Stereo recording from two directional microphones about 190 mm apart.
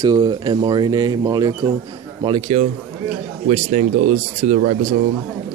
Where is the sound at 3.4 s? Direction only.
40° right (ahead or behind).